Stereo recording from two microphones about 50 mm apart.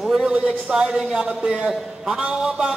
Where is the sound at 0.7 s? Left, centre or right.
Centre.